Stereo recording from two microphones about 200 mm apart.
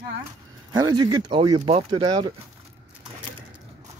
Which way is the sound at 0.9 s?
20° right (ahead or behind).